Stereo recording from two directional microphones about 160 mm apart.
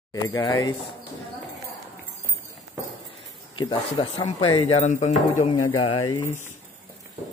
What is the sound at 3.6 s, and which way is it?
Speech, 25° left (ahead or behind).